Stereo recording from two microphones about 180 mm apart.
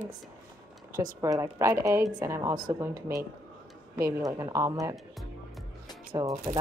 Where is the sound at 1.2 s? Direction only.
15° right (ahead or behind).